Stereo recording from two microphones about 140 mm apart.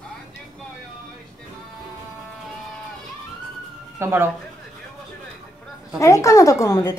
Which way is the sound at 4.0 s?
15° right (ahead or behind).